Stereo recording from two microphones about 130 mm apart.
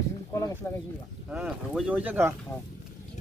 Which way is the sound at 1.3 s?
5° right (ahead or behind).